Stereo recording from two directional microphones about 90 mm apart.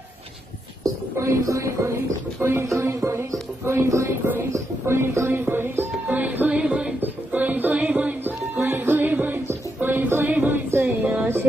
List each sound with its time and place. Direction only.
0.8 s speech: 30° right (ahead or behind)
4.5 s music: 30° right (ahead or behind)
11.1 s a sound: 25° right (ahead or behind)